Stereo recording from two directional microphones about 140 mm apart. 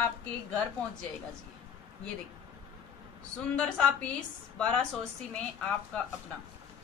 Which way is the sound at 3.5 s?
10° left (ahead or behind).